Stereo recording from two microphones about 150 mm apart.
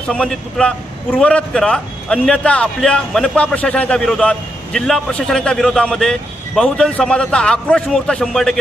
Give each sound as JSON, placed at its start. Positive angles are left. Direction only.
{"t": 0.1, "sound": "a man's voice", "side_deg": 5}